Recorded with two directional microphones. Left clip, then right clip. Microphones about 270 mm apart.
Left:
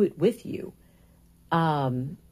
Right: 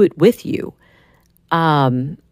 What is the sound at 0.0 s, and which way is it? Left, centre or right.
Speech, right.